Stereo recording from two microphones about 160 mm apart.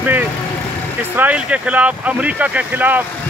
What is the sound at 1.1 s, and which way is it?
Speech, 10° right (ahead or behind).